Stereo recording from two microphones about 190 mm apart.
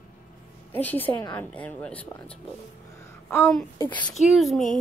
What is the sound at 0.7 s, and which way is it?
A child's voice, 10° left (ahead or behind).